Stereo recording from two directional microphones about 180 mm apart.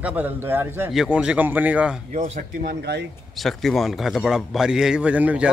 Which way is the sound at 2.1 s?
40° right (ahead or behind).